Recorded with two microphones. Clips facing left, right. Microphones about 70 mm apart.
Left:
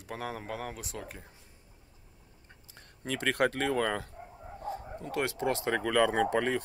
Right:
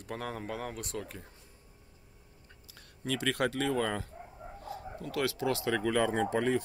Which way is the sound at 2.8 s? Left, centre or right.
Left.